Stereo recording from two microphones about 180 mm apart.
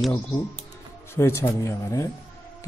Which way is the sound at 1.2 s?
15° left (ahead or behind).